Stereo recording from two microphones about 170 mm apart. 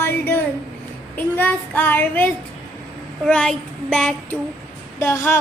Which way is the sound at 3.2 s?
5° left (ahead or behind).